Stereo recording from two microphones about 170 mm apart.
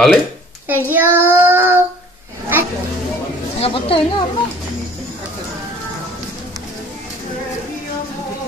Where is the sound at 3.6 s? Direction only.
30° left (ahead or behind).